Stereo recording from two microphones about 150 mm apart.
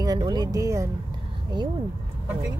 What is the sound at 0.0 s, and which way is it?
Speech, 25° right (ahead or behind).